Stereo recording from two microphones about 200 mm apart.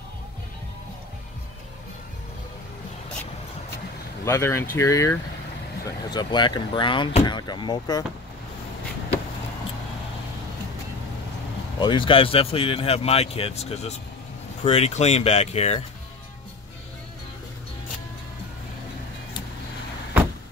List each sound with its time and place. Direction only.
4.2 s speech: 15° left (ahead or behind)
11.8 s speech: 25° left (ahead or behind)